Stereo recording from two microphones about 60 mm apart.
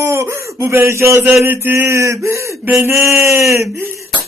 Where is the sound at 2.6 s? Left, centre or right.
Right.